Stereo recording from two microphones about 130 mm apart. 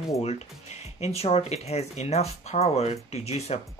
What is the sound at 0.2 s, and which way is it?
Speech, 55° left (ahead or behind).